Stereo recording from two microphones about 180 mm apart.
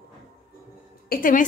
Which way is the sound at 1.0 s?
50° left (ahead or behind).